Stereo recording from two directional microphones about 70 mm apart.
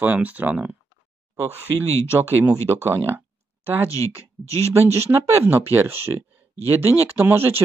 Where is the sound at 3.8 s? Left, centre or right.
Left.